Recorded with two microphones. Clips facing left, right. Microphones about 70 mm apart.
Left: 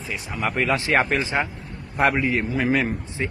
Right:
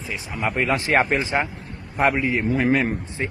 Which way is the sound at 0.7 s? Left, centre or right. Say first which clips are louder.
Right 1 dB; right.